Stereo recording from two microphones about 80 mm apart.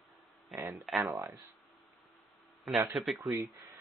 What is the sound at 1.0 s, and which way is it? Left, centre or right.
Speech, right.